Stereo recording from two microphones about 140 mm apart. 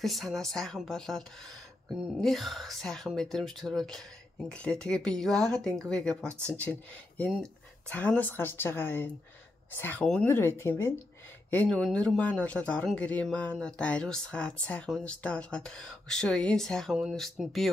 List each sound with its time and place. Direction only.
0.0 s a woman's voice: centre (ahead or behind)
6.2 s speech: 20° right (ahead or behind)
6.5 s speech: 10° left (ahead or behind)